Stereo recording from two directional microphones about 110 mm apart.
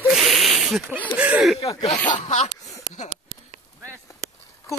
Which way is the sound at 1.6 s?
60° left (ahead or behind).